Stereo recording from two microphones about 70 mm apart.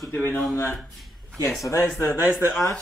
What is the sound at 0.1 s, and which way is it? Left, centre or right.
Speech, left.